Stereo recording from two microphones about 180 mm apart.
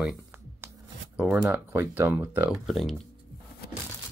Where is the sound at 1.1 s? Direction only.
10° right (ahead or behind).